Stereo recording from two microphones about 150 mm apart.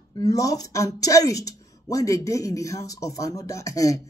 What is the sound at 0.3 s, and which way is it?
Speech, 25° left (ahead or behind).